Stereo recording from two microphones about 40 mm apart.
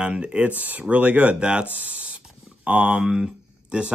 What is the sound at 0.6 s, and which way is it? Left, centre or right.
Speech, right.